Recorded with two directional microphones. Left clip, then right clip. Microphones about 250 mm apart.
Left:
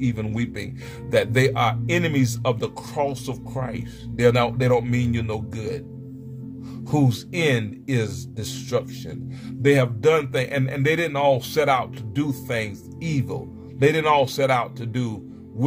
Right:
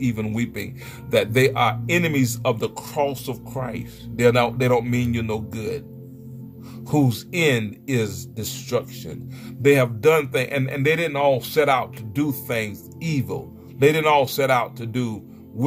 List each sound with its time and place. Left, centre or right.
0.0 s speech: centre
6.9 s speech: centre